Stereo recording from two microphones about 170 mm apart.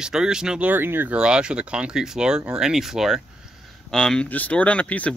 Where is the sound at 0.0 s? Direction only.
5° right (ahead or behind).